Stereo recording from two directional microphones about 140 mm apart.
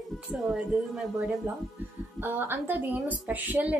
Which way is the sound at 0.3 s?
5° right (ahead or behind).